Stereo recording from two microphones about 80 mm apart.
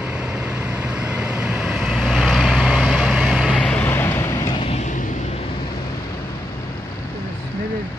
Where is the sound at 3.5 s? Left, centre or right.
Centre.